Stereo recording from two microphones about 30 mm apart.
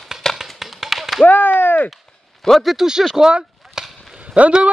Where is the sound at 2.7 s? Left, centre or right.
Right.